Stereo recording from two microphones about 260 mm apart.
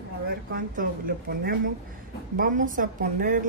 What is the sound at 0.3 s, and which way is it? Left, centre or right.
A woman's voice, right.